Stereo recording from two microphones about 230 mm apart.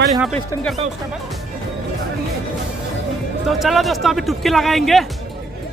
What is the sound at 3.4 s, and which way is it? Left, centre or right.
Speech, centre.